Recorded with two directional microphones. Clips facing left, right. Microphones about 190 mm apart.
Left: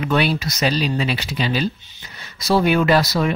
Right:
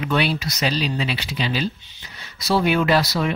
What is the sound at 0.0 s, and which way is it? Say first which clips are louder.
Speech: left 2 dB; 45° left (ahead or behind).